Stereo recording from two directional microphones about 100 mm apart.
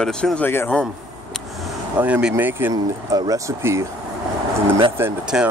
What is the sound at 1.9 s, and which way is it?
Speech, 15° right (ahead or behind).